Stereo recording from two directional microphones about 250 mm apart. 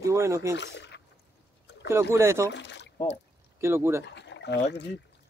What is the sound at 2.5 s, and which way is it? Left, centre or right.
Speech, left.